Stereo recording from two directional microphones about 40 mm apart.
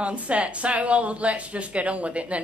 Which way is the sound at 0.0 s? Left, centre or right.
Right.